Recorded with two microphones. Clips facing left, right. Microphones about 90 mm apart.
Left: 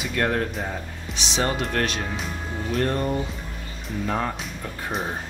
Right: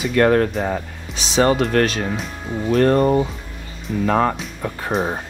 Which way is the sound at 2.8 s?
70° right (ahead or behind).